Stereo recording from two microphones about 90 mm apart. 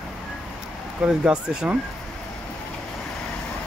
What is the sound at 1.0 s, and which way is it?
Speech, 10° right (ahead or behind).